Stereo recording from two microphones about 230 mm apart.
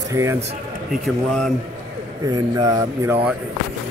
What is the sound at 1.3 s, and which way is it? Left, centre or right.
Speech, centre.